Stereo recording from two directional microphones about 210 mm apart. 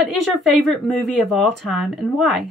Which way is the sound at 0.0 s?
Centre (ahead or behind).